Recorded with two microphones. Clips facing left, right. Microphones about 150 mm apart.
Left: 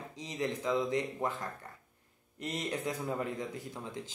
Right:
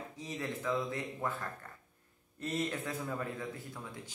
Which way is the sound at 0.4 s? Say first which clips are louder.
Left 4 dB; 20° left (ahead or behind).